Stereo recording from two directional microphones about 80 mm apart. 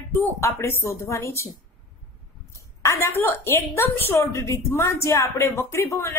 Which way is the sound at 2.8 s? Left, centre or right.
Left.